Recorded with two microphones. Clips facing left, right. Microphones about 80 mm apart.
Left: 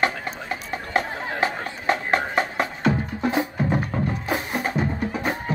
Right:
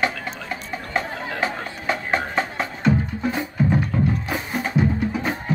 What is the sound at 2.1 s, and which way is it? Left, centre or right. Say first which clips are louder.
Music: left 1 dB; centre.